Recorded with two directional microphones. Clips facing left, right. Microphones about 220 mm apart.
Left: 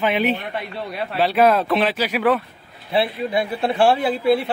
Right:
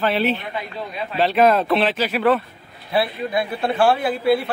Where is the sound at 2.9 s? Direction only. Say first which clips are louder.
Left 1 dB; 25° left (ahead or behind).